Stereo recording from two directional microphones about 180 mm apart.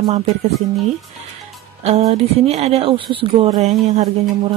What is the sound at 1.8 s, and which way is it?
A woman's voice, 35° right (ahead or behind).